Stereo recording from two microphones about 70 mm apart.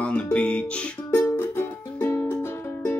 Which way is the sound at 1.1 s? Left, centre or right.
Left.